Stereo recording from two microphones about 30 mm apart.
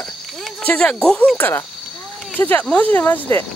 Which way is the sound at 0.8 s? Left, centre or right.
Left.